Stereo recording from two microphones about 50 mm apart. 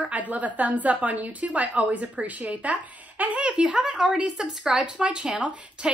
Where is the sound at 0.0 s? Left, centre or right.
Right.